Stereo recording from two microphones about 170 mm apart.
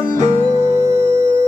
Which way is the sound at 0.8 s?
40° right (ahead or behind).